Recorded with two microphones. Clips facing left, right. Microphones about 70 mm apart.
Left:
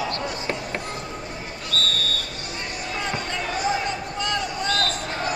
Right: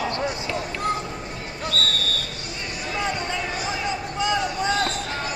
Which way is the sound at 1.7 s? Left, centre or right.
Right.